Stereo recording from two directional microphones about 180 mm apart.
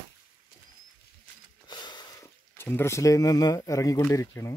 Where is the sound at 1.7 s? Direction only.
25° left (ahead or behind).